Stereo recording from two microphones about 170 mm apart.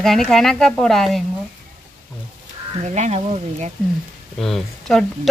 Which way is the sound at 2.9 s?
40° right (ahead or behind).